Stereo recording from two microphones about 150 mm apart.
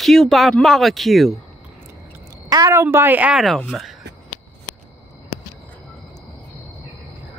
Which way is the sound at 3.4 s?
Centre (ahead or behind).